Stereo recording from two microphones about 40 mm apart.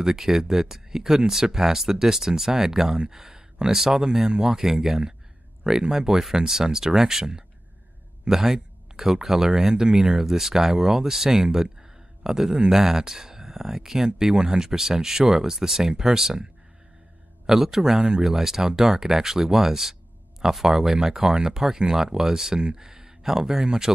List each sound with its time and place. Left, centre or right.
0.0 s speech: centre
17.5 s speech: centre